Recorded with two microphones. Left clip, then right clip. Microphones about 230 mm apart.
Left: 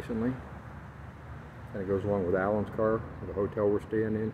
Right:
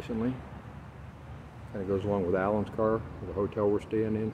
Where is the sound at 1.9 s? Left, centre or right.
Centre.